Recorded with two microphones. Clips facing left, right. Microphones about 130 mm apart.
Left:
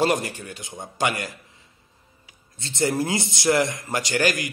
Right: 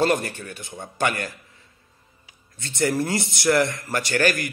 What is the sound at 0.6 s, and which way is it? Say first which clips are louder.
Speech: even; 15° left (ahead or behind).